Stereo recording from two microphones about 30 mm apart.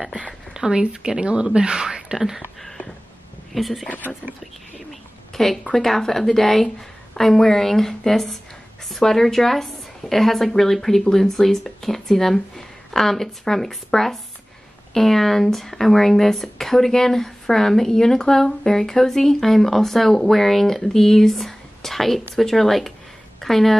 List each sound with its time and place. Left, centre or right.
0.5 s speech: right
2.1 s speech: centre
3.5 s speech: centre
5.3 s a woman's voice: centre